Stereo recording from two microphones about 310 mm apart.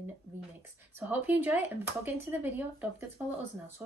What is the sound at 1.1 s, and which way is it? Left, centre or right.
Speech, centre.